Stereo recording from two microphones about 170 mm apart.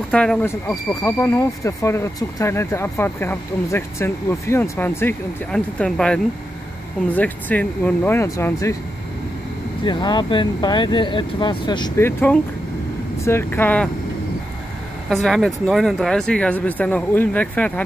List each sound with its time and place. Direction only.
0.1 s speech: 5° left (ahead or behind)
9.8 s speech: 25° left (ahead or behind)
12.0 s speech: 15° left (ahead or behind)
15.0 s speech: centre (ahead or behind)